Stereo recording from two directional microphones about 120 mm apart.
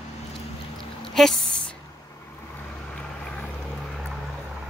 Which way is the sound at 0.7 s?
5° left (ahead or behind).